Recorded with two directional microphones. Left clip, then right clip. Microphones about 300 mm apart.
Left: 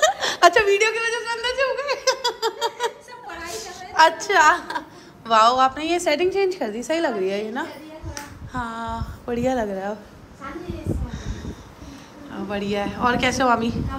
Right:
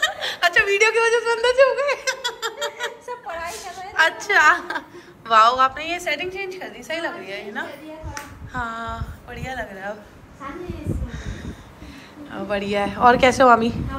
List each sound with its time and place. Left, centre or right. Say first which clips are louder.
0.0 s a sound: left 5 dB; left
3.9 s a woman's voice: left 2 dB; centre
8.5 s a woman's voice: even; centre
11.1 s crow: even; centre
12.3 s a woman's voice: right 3 dB; centre